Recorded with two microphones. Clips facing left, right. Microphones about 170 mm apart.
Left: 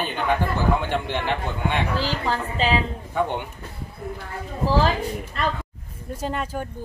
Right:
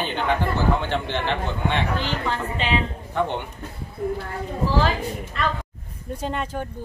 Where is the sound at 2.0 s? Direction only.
35° left (ahead or behind).